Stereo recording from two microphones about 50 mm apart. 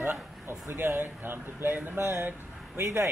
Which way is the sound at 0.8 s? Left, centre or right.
Right.